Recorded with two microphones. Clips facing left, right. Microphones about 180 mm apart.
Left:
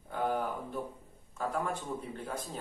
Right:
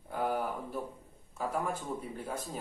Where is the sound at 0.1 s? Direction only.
5° right (ahead or behind).